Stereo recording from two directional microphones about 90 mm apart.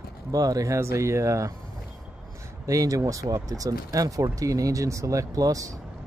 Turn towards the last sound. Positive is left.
turn(degrees=-40)  # may be behind; listen again after turning